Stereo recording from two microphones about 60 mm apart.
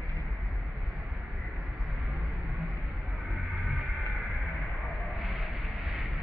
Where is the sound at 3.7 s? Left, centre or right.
Centre.